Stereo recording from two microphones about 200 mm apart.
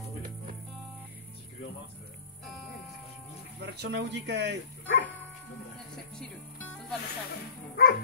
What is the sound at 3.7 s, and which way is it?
Speech, 60° right (ahead or behind).